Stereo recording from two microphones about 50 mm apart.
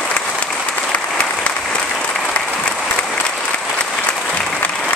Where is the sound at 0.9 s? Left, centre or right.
Left.